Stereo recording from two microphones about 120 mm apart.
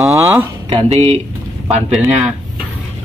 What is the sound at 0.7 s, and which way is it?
Speech, 60° right (ahead or behind).